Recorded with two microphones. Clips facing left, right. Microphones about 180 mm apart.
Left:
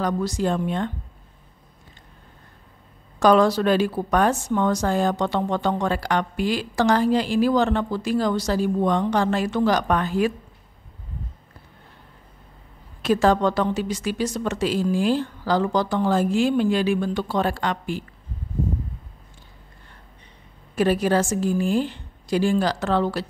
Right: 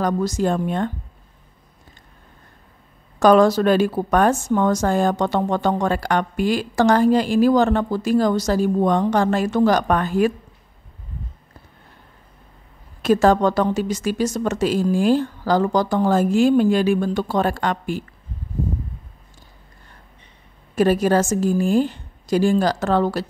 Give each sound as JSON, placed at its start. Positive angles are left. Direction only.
{"t": 0.0, "sound": "a woman's voice", "side_deg": -45}
{"t": 3.2, "sound": "a woman's voice", "side_deg": -50}
{"t": 13.0, "sound": "a woman's voice", "side_deg": -45}
{"t": 20.7, "sound": "a woman's voice", "side_deg": -45}